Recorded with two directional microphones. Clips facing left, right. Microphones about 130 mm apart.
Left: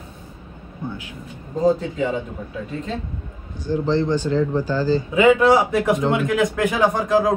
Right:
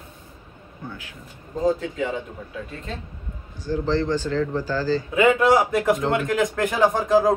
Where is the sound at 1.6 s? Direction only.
35° left (ahead or behind).